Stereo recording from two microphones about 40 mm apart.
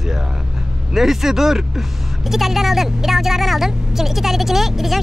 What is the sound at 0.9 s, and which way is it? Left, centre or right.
A woman's voice, centre.